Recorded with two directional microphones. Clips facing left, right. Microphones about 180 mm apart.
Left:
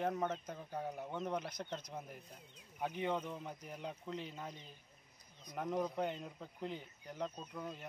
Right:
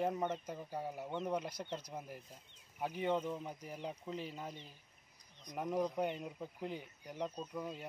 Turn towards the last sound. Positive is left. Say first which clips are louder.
# right 3 dB
turn(degrees=-5)  # may be behind; listen again after turning